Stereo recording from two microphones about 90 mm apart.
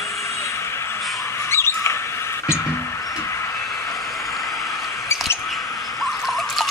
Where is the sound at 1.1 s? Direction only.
30° left (ahead or behind).